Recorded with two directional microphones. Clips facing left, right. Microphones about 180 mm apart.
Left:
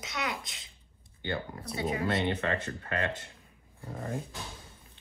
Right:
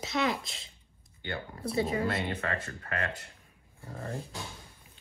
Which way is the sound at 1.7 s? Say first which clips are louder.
Right 4 dB; 35° right (ahead or behind).